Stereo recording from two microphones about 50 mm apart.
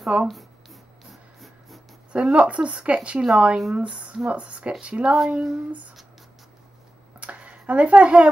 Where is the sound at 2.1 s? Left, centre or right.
Right.